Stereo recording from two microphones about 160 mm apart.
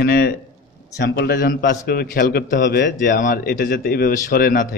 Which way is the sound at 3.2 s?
60° left (ahead or behind).